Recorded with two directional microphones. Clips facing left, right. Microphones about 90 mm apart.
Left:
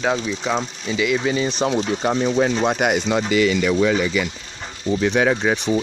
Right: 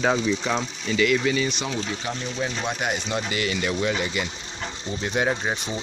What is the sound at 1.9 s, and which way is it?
Speech, 60° left (ahead or behind).